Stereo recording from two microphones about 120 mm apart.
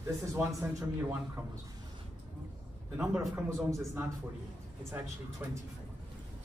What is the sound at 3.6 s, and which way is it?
Speech, 25° right (ahead or behind).